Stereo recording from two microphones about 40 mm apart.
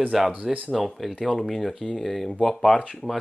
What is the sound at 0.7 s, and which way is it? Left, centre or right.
Speech, centre.